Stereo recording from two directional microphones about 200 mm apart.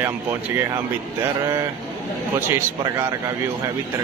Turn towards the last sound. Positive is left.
turn(degrees=-15)  # may be behind; listen again after turning